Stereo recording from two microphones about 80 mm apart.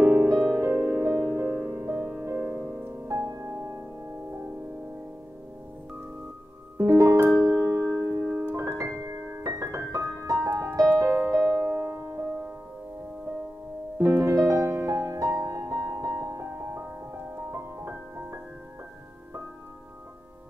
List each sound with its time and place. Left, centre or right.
0.0 s music: right
2.0 s music: centre
3.1 s music: right
6.8 s music: right
8.3 s piano: right
11.2 s music: right
13.9 s music: right